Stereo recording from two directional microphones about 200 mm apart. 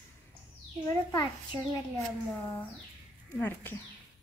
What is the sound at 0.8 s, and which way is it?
Speech, 20° left (ahead or behind).